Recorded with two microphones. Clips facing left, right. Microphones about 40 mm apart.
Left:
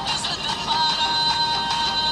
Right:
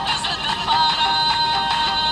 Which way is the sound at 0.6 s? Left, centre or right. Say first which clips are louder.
Right 4 dB; right.